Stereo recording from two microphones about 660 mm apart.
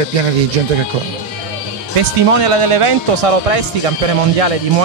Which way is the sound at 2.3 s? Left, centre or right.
Right.